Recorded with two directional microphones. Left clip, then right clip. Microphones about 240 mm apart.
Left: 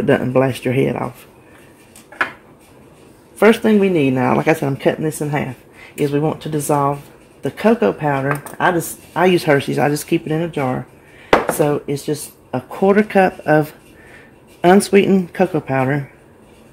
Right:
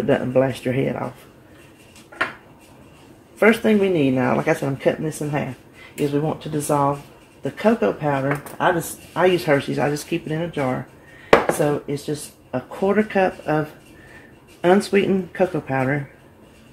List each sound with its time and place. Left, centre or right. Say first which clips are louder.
0.0 s speech: left 3 dB; left
3.3 s speech: left 4 dB; left
11.3 s dishes: left 1 dB; centre
11.7 s speech: left 4 dB; left